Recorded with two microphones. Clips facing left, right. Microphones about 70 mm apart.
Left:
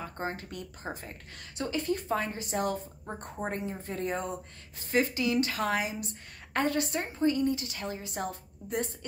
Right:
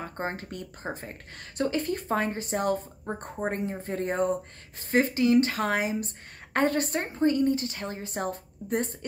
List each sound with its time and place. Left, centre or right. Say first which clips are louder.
0.0 s speech: right 3 dB; right